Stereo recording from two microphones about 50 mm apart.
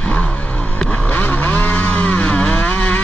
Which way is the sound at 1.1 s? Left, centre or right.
Left.